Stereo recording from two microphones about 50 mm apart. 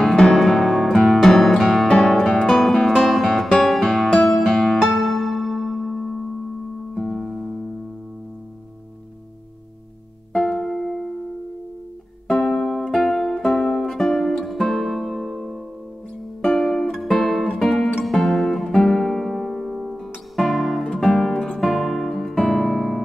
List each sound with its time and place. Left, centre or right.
0.2 s music: centre
10.3 s music: centre
12.3 s music: centre
21.5 s piano: centre